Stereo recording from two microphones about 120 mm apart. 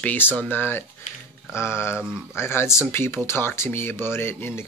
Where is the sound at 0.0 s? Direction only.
15° left (ahead or behind).